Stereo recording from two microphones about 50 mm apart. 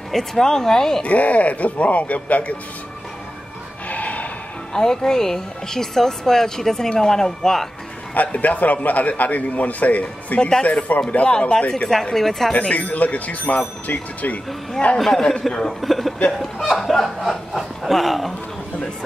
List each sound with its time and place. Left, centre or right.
0.1 s a woman's voice: centre
1.0 s speech: left
3.9 s snort: left
4.7 s a woman's voice: centre
8.1 s a man's voice: left
11.7 s a woman's voice: centre
12.5 s a man's voice: left
15.0 s a woman's voice: centre
15.8 s speech: centre